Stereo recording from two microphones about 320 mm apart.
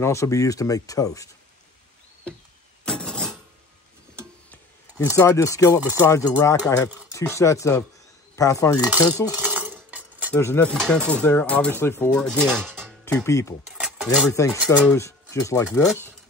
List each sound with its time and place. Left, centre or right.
0.0 s speech: centre
2.8 s a sound: centre
4.5 s a sound: centre
6.0 s speech: centre
9.1 s cutlery: centre
10.4 s speech: centre
14.6 s speech: centre
15.0 s speech: centre